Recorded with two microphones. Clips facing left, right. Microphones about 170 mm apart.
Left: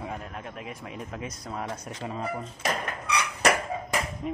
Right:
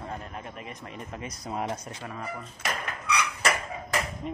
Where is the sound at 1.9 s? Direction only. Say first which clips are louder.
Left 5 dB; 25° left (ahead or behind).